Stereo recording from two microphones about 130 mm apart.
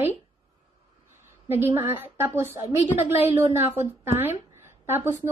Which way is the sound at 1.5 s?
15° right (ahead or behind).